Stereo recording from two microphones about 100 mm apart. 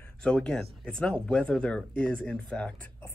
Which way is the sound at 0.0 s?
10° left (ahead or behind).